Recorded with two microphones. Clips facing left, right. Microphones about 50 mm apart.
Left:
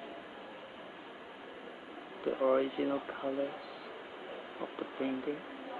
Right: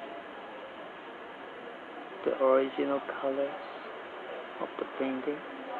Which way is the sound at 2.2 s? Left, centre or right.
Centre.